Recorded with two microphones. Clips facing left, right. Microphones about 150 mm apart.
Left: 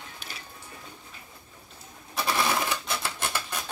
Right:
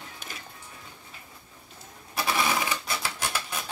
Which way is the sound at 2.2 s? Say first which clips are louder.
Even; 5° right (ahead or behind).